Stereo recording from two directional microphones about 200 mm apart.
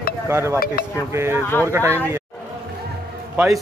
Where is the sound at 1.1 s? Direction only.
10° right (ahead or behind).